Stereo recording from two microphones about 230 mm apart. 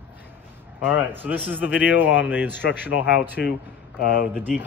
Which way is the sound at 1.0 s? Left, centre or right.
Centre.